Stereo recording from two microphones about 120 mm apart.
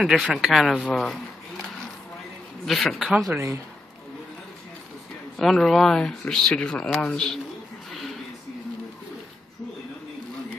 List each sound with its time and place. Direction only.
0.0 s speech: centre (ahead or behind)
3.3 s speech: 25° right (ahead or behind)
5.4 s speech: centre (ahead or behind)